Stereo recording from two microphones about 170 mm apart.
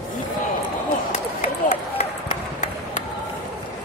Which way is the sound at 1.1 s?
45° left (ahead or behind).